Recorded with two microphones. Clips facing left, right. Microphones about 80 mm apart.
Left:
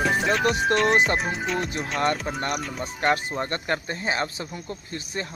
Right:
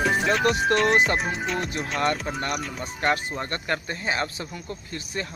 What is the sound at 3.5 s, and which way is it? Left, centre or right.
Speech, left.